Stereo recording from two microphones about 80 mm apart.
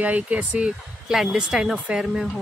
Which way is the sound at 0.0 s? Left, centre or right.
Centre.